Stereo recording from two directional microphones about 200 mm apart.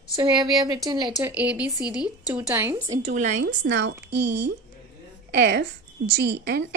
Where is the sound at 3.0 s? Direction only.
35° right (ahead or behind).